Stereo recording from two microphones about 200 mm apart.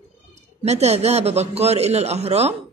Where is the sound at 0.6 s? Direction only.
35° right (ahead or behind).